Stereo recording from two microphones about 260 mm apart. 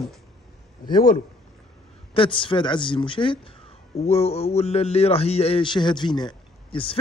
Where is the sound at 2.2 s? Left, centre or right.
Centre.